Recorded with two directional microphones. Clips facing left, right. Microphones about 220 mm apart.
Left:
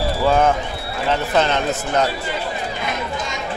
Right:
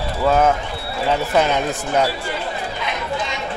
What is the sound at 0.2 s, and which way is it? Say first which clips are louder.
A man's voice: right 1 dB; 5° right (ahead or behind).